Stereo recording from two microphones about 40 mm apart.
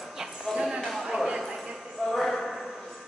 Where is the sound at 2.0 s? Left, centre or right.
Centre.